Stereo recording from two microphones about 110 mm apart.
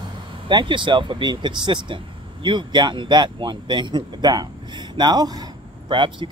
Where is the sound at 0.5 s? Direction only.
45° right (ahead or behind).